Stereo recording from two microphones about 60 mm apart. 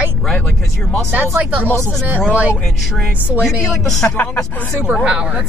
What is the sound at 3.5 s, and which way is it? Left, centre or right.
Speech, centre.